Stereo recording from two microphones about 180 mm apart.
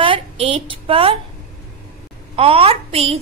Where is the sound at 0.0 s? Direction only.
30° right (ahead or behind).